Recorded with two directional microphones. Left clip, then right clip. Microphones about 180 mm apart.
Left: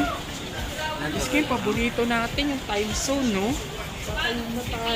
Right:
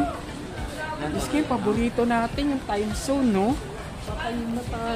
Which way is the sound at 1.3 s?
60° right (ahead or behind).